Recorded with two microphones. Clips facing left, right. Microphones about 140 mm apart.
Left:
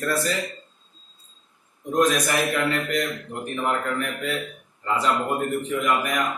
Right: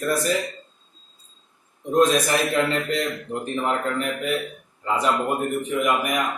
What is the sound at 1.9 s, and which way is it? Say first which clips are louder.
A man's voice: right 2 dB; 25° right (ahead or behind).